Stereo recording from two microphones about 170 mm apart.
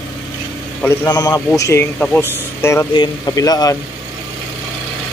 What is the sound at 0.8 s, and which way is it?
Speech, 20° left (ahead or behind).